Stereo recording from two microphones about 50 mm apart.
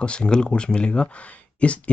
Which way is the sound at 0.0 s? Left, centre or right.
Centre.